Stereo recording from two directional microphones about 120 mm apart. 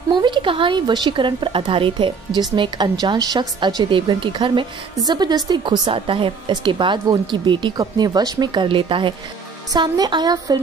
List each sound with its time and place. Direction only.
0.1 s a woman's voice: 40° right (ahead or behind)
9.7 s a woman's voice: 35° right (ahead or behind)